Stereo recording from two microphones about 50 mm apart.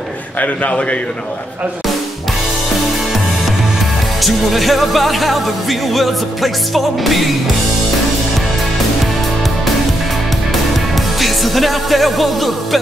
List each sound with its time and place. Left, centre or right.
0.4 s a man's voice: left
4.2 s music: centre
11.1 s music: centre